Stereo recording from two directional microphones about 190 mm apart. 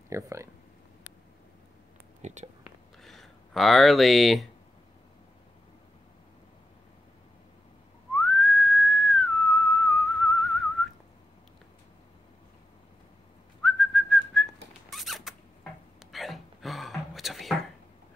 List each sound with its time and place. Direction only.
0.1 s speech: 15° right (ahead or behind)
2.2 s speech: 35° right (ahead or behind)
3.0 s speech: centre (ahead or behind)
8.2 s whistling: centre (ahead or behind)
13.6 s whistling: centre (ahead or behind)
16.0 s a sound: centre (ahead or behind)